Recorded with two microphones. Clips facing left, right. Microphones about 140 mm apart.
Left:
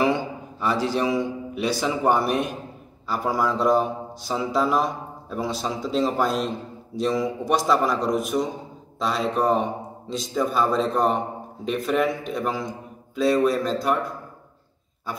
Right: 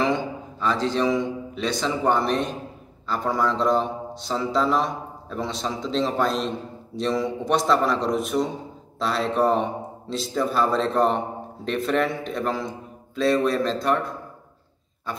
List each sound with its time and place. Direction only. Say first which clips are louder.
0.0 s a man's voice: left 1 dB; 10° left (ahead or behind)